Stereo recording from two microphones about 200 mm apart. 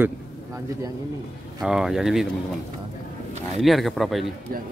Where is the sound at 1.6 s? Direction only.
5° right (ahead or behind).